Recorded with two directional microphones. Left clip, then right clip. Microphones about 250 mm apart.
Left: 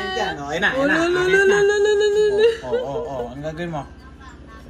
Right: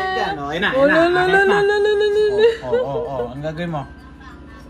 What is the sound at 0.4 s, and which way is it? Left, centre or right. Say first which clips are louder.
Speech: even; right.